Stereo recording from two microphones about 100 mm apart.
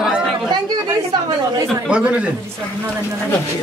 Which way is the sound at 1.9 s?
10° right (ahead or behind).